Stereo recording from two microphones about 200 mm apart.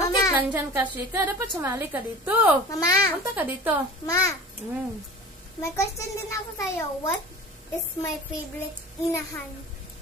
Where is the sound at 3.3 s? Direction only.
10° right (ahead or behind).